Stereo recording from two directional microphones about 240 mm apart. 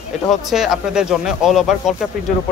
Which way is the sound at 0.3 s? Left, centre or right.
Centre.